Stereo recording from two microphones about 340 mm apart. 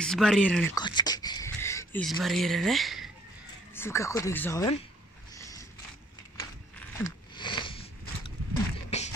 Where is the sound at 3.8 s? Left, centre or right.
Centre.